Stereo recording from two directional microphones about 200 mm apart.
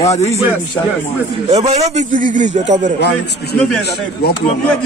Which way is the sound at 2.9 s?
60° left (ahead or behind).